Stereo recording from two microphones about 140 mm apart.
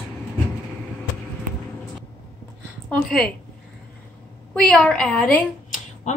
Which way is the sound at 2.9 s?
5° left (ahead or behind).